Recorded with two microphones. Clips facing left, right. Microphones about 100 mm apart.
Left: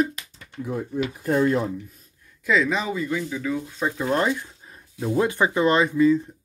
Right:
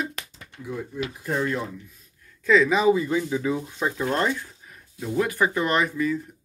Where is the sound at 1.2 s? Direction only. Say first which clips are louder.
Left 6 dB; 50° left (ahead or behind).